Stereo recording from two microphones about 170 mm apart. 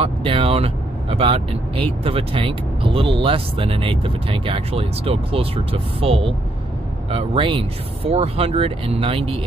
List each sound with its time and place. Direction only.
0.0 s speech: 35° right (ahead or behind)